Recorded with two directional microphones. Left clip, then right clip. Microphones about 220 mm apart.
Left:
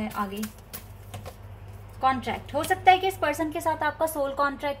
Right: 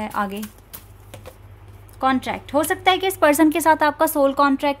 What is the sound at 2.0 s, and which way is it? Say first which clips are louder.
A woman's voice: right 4 dB; 50° right (ahead or behind).